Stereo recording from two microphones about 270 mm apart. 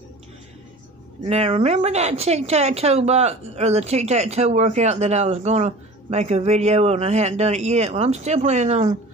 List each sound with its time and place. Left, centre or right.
1.2 s a woman's voice: right